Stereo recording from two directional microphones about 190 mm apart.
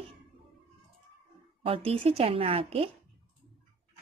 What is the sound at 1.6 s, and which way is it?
A woman's voice, 30° right (ahead or behind).